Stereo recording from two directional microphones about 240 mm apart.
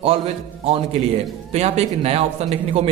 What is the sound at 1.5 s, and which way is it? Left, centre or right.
A man's voice, right.